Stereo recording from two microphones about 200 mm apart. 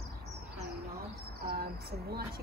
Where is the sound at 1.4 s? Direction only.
50° right (ahead or behind).